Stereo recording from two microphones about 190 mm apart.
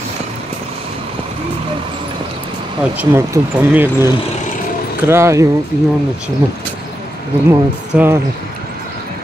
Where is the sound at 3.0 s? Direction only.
10° right (ahead or behind).